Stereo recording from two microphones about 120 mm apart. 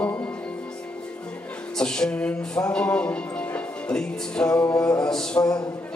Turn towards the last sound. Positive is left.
turn(degrees=5)  # may be behind; listen again after turning